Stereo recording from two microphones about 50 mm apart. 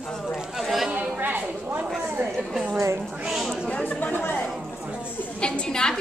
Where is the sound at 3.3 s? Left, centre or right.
Centre.